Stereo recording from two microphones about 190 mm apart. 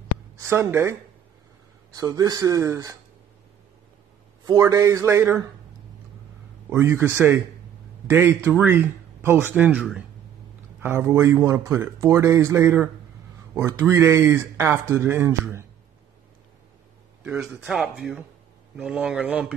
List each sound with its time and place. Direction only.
0.4 s speech: 15° right (ahead or behind)
2.0 s speech: 20° right (ahead or behind)
4.5 s speech: 15° right (ahead or behind)
6.7 s speech: 10° right (ahead or behind)
17.2 s speech: 5° right (ahead or behind)